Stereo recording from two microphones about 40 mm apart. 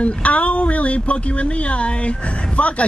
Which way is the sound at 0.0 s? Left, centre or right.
Left.